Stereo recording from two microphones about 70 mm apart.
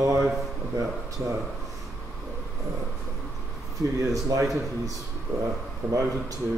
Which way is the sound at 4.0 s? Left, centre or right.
Right.